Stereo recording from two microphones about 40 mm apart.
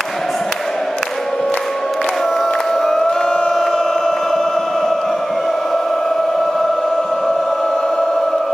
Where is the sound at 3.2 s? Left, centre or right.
Centre.